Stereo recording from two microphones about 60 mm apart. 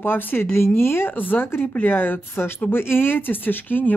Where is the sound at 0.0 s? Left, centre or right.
Left.